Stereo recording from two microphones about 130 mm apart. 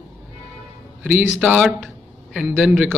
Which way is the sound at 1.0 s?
10° right (ahead or behind).